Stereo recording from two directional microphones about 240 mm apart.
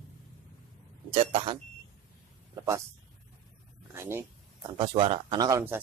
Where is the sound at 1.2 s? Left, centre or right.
Right.